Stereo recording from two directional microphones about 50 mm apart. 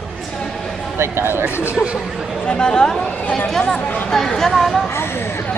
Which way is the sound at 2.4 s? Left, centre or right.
Centre.